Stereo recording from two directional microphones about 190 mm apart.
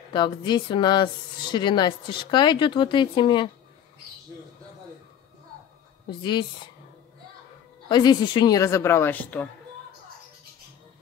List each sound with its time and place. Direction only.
0.1 s speech: 25° left (ahead or behind)
6.0 s speech: 25° left (ahead or behind)
7.9 s a woman's voice: 20° left (ahead or behind)